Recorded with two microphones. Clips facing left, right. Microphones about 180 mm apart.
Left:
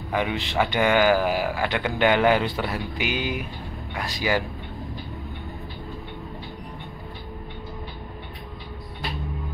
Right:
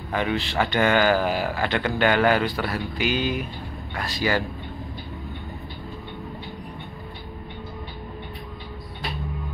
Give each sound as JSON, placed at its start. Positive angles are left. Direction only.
{"t": 0.1, "sound": "a man's voice", "side_deg": 15}